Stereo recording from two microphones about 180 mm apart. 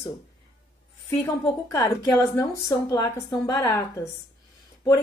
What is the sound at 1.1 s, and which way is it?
A woman's voice, 15° left (ahead or behind).